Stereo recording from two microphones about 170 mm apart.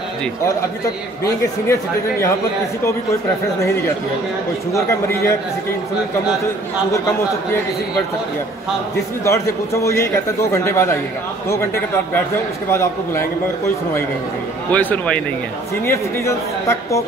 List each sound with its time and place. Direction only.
1.7 s speech: 15° left (ahead or behind)
4.7 s speech: 15° left (ahead or behind)
9.2 s speech: 15° left (ahead or behind)
12.7 s speech: 15° left (ahead or behind)
14.7 s speech: 10° left (ahead or behind)